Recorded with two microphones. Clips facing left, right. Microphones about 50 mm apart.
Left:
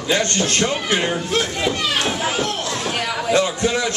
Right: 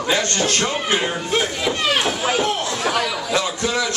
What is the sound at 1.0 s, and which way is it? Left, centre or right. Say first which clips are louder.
Speech: even; centre.